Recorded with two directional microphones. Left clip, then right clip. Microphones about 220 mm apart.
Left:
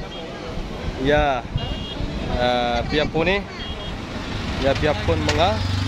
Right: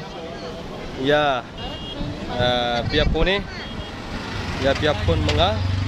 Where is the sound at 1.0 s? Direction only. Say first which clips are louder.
Even; 5° right (ahead or behind).